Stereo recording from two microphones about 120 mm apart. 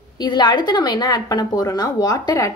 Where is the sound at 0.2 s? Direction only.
40° left (ahead or behind).